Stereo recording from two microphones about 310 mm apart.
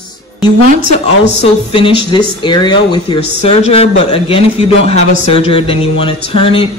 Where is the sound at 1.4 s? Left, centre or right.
Centre.